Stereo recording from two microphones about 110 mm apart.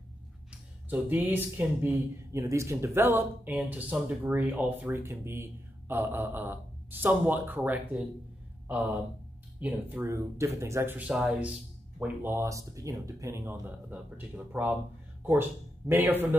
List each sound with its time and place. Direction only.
0.8 s speech: 15° right (ahead or behind)
11.0 s speech: 10° right (ahead or behind)
15.9 s speech: 20° right (ahead or behind)